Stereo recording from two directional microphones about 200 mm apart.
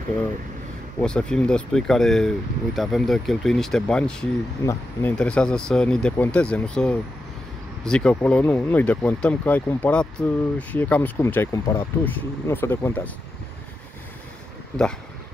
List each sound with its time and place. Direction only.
1.0 s speech: 5° left (ahead or behind)